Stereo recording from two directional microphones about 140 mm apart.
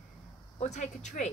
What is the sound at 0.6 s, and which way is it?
Speech, 55° left (ahead or behind).